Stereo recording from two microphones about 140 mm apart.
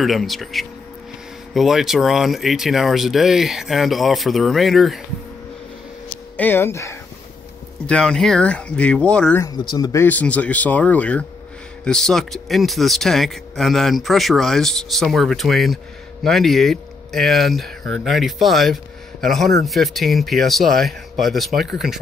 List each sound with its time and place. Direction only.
0.0 s speech: centre (ahead or behind)
6.3 s speech: 15° left (ahead or behind)
7.8 s speech: 5° left (ahead or behind)
9.4 s speech: 30° left (ahead or behind)
10.0 s speech: 10° left (ahead or behind)